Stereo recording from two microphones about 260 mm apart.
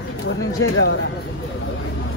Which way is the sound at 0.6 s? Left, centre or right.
Left.